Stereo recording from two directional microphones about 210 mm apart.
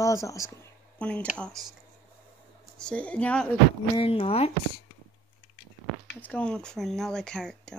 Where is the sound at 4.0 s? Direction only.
25° left (ahead or behind).